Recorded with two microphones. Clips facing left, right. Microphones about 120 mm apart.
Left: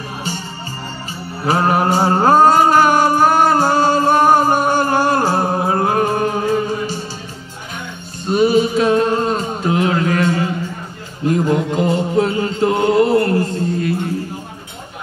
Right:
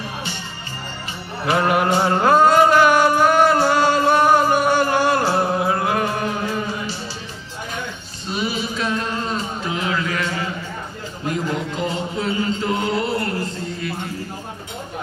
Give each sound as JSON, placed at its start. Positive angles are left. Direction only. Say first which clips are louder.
{"t": 1.4, "sound": "music", "louder": "left 3 dB", "side_deg": 40}
{"t": 8.3, "sound": "music", "louder": "left 11 dB", "side_deg": 45}